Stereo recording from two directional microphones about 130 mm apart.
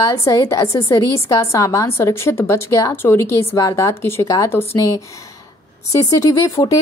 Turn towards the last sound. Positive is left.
turn(degrees=25)  # may be behind; listen again after turning